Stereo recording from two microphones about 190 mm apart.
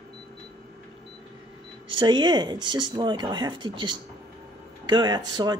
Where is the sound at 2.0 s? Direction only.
25° right (ahead or behind).